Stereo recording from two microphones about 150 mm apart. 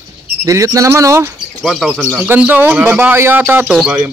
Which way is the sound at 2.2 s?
10° right (ahead or behind).